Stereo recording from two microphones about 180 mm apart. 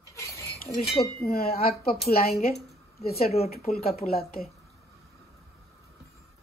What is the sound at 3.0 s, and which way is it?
Speech, 55° left (ahead or behind).